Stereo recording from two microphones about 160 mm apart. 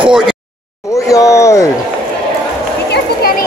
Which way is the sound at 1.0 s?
20° left (ahead or behind).